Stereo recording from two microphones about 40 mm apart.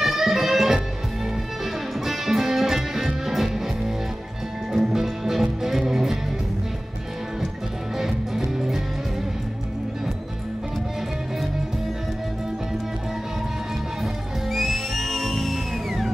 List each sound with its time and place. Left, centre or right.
0.0 s music: centre
2.0 s music: centre
4.7 s music: centre
8.0 s music: centre
14.0 s music: centre